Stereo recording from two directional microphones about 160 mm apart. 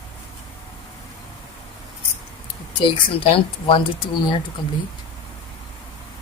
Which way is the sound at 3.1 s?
35° left (ahead or behind).